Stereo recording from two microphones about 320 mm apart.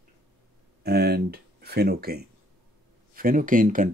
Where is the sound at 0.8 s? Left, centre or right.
Right.